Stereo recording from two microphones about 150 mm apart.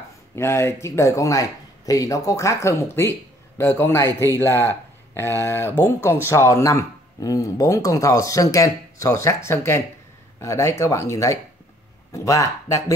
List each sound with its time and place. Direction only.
0.4 s speech: 15° left (ahead or behind)